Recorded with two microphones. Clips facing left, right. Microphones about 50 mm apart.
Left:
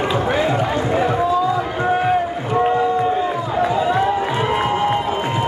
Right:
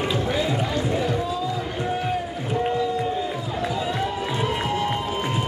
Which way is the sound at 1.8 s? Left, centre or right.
Left.